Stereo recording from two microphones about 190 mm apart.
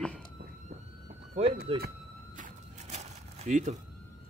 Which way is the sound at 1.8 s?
45° right (ahead or behind).